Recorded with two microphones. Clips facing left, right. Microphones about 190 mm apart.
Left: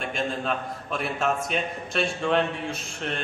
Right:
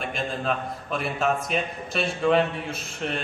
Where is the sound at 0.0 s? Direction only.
Centre (ahead or behind).